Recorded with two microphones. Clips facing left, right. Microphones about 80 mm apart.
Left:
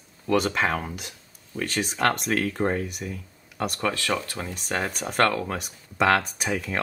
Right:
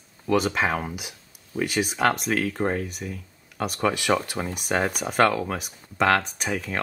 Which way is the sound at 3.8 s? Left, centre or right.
Centre.